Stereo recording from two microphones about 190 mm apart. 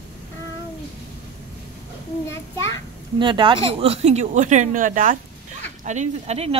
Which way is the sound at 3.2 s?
25° right (ahead or behind).